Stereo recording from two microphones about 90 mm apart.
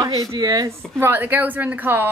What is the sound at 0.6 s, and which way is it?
A woman's voice, 25° right (ahead or behind).